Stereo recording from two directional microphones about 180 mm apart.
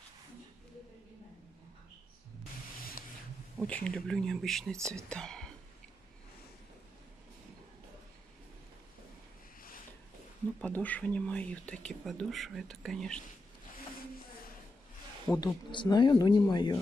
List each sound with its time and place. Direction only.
3.6 s speech: 5° left (ahead or behind)
10.6 s speech: 10° left (ahead or behind)
15.2 s speech: 20° left (ahead or behind)